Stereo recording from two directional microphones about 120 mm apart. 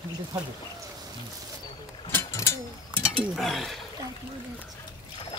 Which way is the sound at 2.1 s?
20° left (ahead or behind).